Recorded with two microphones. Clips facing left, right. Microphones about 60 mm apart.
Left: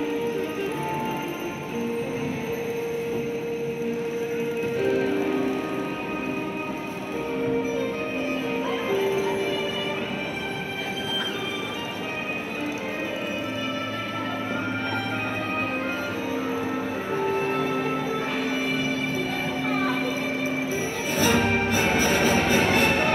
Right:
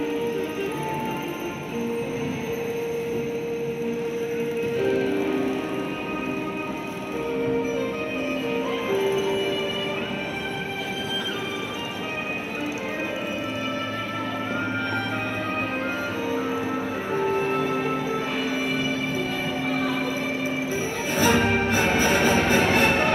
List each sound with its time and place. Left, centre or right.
4.9 s music: left
9.0 s music: left
17.1 s music: right
21.2 s music: right